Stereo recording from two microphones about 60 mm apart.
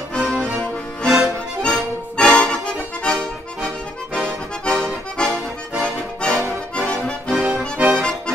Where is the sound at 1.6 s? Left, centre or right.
Centre.